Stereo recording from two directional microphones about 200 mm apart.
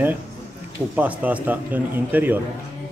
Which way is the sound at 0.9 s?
5° right (ahead or behind).